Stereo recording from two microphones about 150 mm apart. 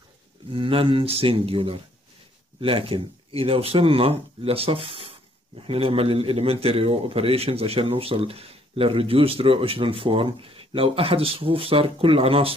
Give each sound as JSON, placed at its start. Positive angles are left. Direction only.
{"t": 0.5, "sound": "a man's voice", "side_deg": -35}